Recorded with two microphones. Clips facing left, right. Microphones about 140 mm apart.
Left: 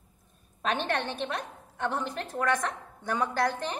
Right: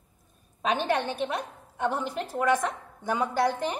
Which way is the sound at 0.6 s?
5° right (ahead or behind).